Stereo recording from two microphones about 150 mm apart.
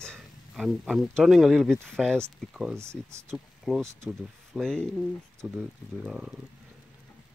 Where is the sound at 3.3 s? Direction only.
Centre (ahead or behind).